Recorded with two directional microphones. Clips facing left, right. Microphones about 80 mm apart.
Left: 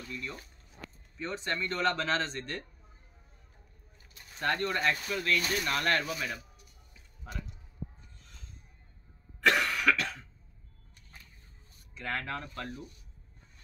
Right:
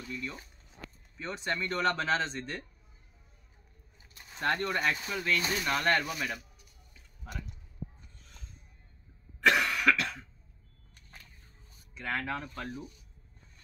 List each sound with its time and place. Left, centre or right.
0.1 s speech: centre
4.4 s speech: centre
6.1 s speech: centre
9.4 s cough: centre
12.2 s speech: centre